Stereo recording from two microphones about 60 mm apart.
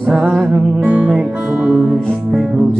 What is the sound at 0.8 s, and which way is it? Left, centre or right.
Music, centre.